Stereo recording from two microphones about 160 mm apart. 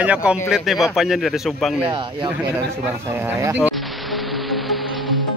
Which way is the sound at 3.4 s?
15° right (ahead or behind).